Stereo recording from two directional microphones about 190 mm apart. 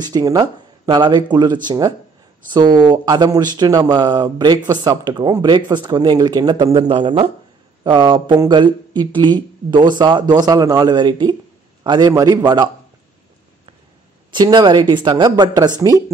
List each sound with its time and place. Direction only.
0.0 s speech: 20° right (ahead or behind)
14.3 s speech: 20° right (ahead or behind)